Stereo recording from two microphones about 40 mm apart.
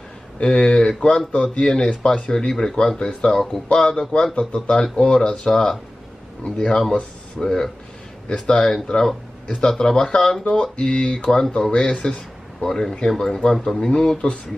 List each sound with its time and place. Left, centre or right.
0.4 s a man's voice: left
2.3 s a man's voice: centre
7.4 s a man's voice: centre
11.2 s speech: centre
11.7 s speech: left
12.6 s speech: centre